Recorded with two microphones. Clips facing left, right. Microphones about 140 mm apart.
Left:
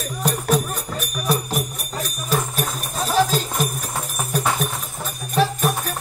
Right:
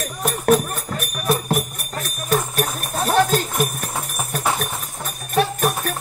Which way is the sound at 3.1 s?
55° right (ahead or behind).